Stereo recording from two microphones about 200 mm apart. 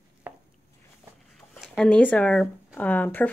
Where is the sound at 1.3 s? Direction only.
Centre (ahead or behind).